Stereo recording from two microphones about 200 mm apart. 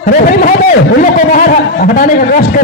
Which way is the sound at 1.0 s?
45° left (ahead or behind).